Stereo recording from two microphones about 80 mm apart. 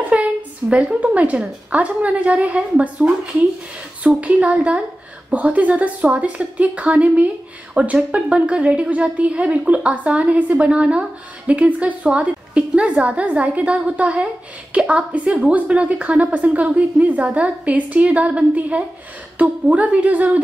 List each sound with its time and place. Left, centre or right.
0.1 s a woman's voice: centre
4.2 s a woman's voice: centre